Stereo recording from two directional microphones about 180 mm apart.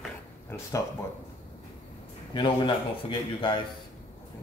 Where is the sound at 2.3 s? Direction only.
25° left (ahead or behind).